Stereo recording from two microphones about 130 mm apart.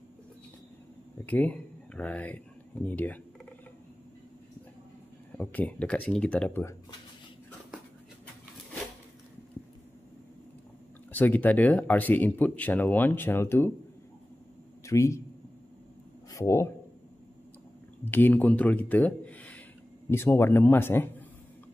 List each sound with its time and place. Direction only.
1.2 s speech: 10° left (ahead or behind)
5.4 s speech: 10° left (ahead or behind)
11.1 s speech: 15° left (ahead or behind)
14.9 s a man's voice: 20° left (ahead or behind)
16.3 s speech: 25° left (ahead or behind)
18.0 s speech: 15° left (ahead or behind)